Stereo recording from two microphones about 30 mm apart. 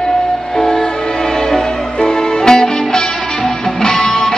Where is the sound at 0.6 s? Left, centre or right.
Centre.